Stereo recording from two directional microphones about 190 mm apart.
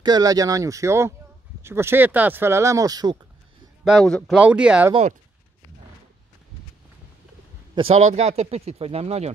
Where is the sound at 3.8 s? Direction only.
Centre (ahead or behind).